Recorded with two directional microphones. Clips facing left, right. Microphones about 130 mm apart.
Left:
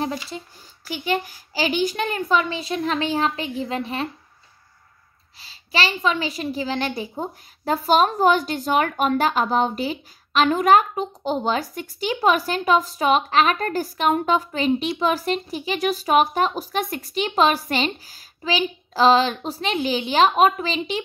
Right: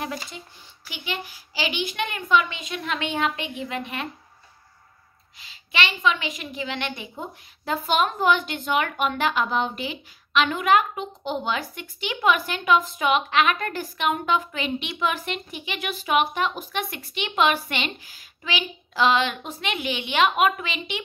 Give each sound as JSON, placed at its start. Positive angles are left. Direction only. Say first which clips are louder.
{"t": 0.8, "sound": "a woman's voice", "louder": "left 9 dB", "side_deg": 45}
{"t": 5.4, "sound": "a woman's voice", "louder": "left 3 dB", "side_deg": 35}